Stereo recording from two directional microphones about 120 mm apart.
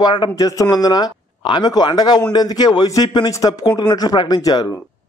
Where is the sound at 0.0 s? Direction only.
40° left (ahead or behind).